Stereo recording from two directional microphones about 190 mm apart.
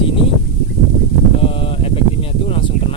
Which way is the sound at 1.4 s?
30° left (ahead or behind).